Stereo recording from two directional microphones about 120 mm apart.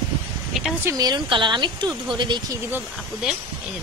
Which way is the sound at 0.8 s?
35° right (ahead or behind).